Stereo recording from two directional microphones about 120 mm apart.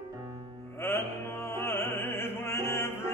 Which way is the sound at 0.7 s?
20° left (ahead or behind).